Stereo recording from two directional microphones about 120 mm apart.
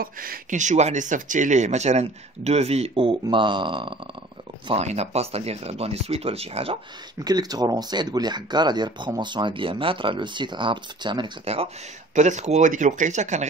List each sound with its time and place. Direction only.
0.5 s a man's voice: 90° right; by 3.9 s 40° right (ahead or behind)
4.7 s speech: 65° right (ahead or behind)
7.2 s speech: 35° right (ahead or behind)
11.4 s speech: 55° right (ahead or behind)
12.2 s speech: 75° right (ahead or behind)